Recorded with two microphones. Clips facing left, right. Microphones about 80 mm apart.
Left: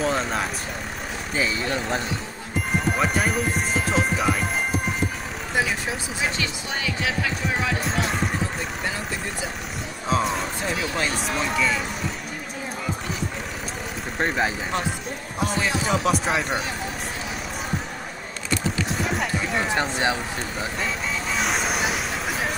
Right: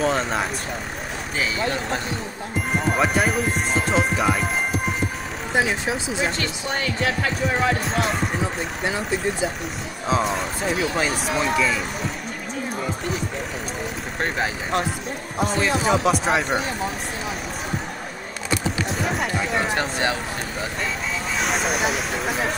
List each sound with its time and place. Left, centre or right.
0.0 s vehicle: centre
3.0 s speech: centre
6.2 s speech: right
10.0 s speech: centre
14.2 s speech: centre
15.9 s speech: centre
18.9 s clip-clop: centre
19.7 s speech: centre
21.4 s a sound: centre